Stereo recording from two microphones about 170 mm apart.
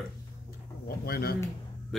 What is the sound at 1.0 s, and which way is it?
Speech, 65° left (ahead or behind).